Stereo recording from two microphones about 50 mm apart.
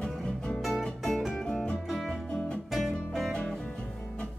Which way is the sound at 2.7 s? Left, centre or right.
Centre.